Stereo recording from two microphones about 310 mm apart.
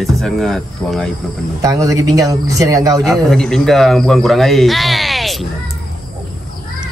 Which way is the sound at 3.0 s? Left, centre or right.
Centre.